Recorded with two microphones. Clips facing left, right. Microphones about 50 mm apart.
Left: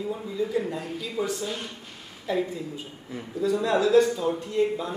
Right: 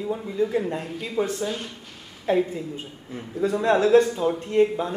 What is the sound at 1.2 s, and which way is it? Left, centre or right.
A man's voice, right.